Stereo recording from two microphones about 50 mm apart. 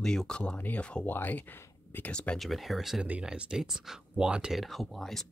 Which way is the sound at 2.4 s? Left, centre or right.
Centre.